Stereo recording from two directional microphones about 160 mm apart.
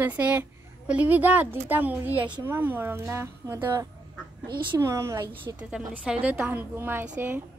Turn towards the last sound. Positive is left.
turn(degrees=-10)  # may be behind; listen again after turning